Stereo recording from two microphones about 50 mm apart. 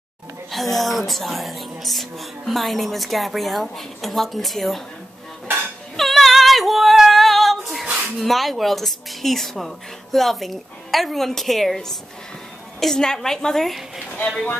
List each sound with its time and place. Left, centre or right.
0.5 s speech: centre
5.9 s female singing: centre
8.2 s a woman's voice: centre